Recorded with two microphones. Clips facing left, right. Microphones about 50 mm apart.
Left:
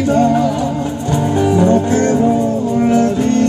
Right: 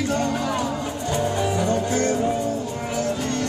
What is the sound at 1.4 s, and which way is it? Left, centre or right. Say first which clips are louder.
Music: left 10 dB; left.